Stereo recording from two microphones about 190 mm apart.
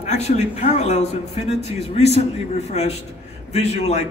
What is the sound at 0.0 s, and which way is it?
A man's voice, 35° left (ahead or behind).